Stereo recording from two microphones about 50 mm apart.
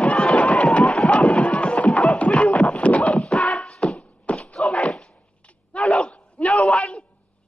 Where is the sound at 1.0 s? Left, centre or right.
Left.